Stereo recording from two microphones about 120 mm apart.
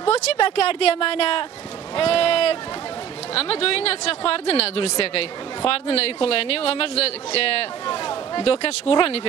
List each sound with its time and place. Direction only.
0.0 s speech: 55° left (ahead or behind)